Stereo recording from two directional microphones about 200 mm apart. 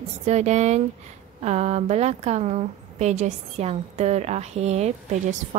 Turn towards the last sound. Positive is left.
turn(degrees=-35)  # may be behind; listen again after turning